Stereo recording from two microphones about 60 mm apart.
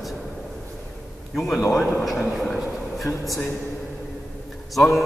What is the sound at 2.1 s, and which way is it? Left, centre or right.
Speech, centre.